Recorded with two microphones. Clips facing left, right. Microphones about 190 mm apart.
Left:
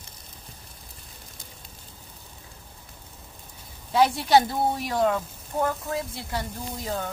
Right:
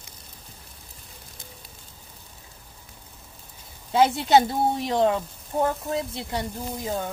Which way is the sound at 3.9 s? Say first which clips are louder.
Right 1 dB; 25° right (ahead or behind).